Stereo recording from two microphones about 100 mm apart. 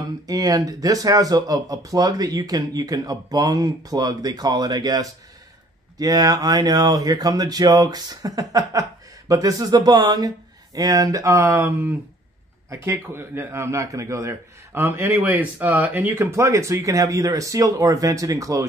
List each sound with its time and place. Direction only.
0.3 s speech: 40° right (ahead or behind)